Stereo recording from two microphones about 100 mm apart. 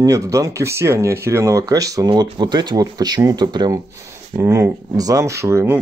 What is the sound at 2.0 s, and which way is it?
Speech, 50° right (ahead or behind).